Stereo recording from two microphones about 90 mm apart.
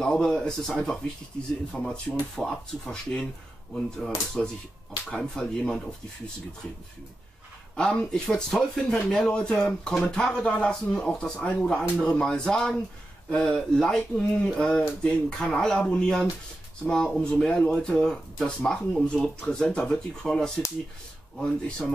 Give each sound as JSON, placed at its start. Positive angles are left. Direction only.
{"t": 0.0, "sound": "speech", "side_deg": 10}
{"t": 4.4, "sound": "speech", "side_deg": 5}
{"t": 7.7, "sound": "speech", "side_deg": 10}